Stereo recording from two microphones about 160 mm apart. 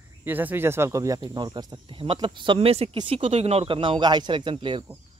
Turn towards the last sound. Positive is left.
turn(degrees=-30)  # may be behind; listen again after turning